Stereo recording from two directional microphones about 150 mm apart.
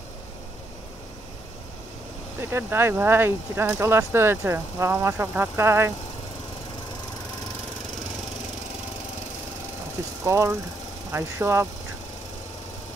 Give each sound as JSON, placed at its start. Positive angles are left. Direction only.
{"t": 2.5, "sound": "speech", "side_deg": -15}
{"t": 10.2, "sound": "speech", "side_deg": -20}